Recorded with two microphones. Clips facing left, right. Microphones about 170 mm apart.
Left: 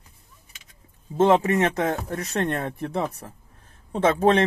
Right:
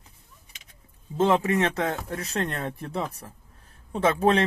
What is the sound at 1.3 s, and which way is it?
Speech, 35° left (ahead or behind).